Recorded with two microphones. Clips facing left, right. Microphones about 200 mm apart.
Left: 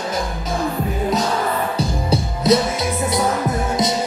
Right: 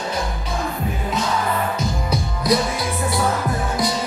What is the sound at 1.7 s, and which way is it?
Music, 25° left (ahead or behind).